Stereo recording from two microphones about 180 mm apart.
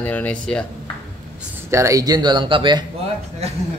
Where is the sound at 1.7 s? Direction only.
15° right (ahead or behind).